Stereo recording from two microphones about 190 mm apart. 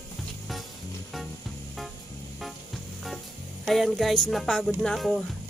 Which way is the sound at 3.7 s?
Centre (ahead or behind).